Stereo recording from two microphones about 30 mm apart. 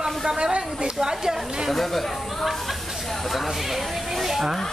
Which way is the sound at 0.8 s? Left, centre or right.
Right.